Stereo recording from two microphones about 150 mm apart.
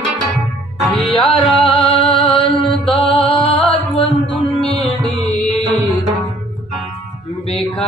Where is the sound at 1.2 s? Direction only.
35° left (ahead or behind).